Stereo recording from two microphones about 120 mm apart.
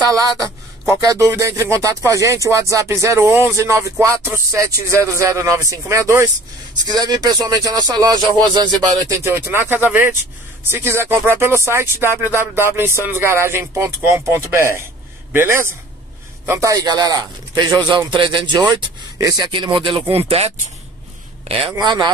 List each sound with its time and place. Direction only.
0.1 s a man's voice: 30° right (ahead or behind)
9.2 s a man's voice: 20° right (ahead or behind)
19.5 s speech: 45° right (ahead or behind)
21.7 s a man's voice: 35° right (ahead or behind)